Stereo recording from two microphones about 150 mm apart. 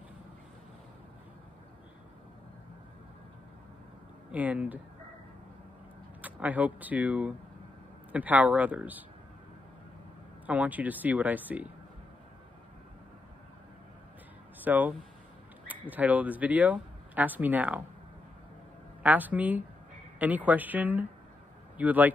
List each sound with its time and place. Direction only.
4.3 s speech: 10° right (ahead or behind)
6.2 s speech: 10° right (ahead or behind)
10.4 s speech: 10° right (ahead or behind)
14.6 s speech: 10° right (ahead or behind)
19.0 s speech: 10° right (ahead or behind)